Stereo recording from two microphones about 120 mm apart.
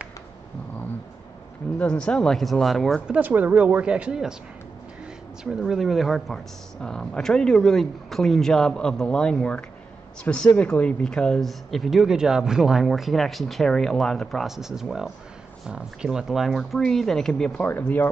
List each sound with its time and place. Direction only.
1.8 s speech: 10° left (ahead or behind)
3.2 s speech: 15° right (ahead or behind)
5.4 s speech: 5° right (ahead or behind)
17.6 s speech: 15° left (ahead or behind)